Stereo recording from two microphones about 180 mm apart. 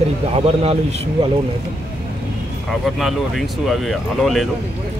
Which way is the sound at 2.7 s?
Centre (ahead or behind).